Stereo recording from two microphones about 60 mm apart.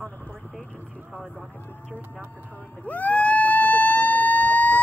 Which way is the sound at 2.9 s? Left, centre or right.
Left.